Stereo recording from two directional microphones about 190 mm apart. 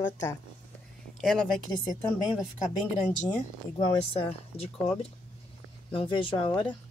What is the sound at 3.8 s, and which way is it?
Speech, 30° left (ahead or behind).